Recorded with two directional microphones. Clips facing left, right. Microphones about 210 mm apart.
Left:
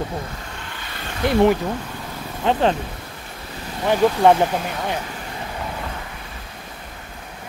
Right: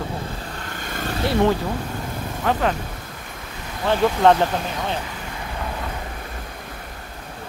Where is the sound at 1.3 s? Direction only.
15° left (ahead or behind).